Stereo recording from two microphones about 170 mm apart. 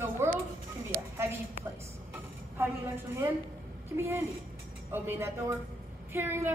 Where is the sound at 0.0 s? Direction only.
15° right (ahead or behind).